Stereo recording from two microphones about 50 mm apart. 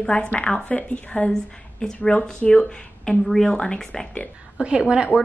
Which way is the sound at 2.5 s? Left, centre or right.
Centre.